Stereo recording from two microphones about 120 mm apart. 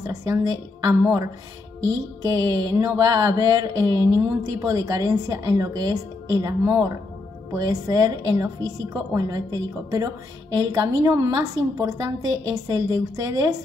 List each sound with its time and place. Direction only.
0.0 s a woman's voice: 30° right (ahead or behind)